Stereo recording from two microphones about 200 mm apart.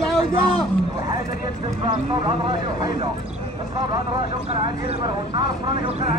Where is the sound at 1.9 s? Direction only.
25° right (ahead or behind).